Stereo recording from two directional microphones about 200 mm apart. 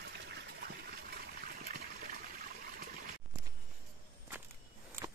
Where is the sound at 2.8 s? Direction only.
45° right (ahead or behind).